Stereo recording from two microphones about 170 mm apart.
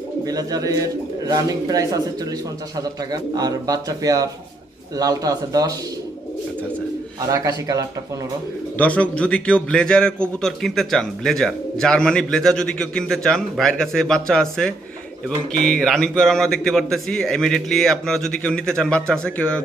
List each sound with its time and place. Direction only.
0.2 s speech: 20° right (ahead or behind)
7.2 s speech: 20° right (ahead or behind)
8.7 s a man's voice: 10° left (ahead or behind)